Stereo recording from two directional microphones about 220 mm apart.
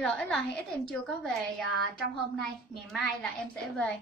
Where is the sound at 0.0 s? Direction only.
5° left (ahead or behind).